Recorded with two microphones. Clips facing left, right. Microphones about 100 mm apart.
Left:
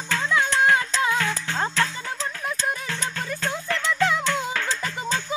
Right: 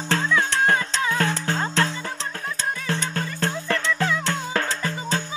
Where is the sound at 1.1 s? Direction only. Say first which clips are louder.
Right 2 dB; 45° right (ahead or behind).